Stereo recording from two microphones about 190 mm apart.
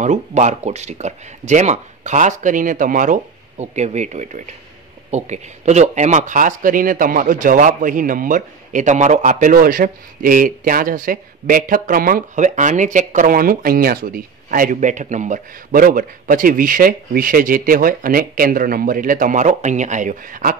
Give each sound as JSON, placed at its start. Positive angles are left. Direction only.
{"t": 0.0, "sound": "speech", "side_deg": -40}